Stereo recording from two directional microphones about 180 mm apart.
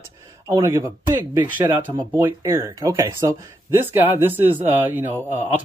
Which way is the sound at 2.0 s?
15° right (ahead or behind).